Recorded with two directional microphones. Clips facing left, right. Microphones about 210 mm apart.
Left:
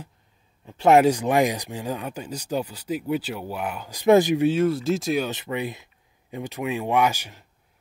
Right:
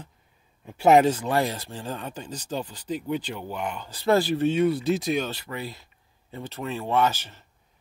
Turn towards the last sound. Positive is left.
turn(degrees=10)  # may be behind; listen again after turning